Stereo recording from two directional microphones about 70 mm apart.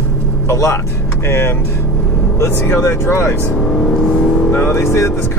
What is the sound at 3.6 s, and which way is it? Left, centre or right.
Vehicle, left.